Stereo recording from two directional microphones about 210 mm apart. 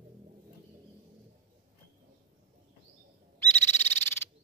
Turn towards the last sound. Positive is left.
turn(degrees=10)  # may be behind; listen again after turning